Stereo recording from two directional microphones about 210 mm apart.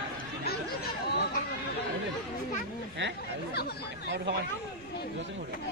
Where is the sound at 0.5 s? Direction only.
45° left (ahead or behind).